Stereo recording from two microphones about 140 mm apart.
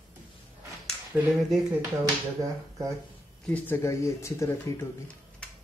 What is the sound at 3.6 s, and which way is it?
Speech, 20° left (ahead or behind).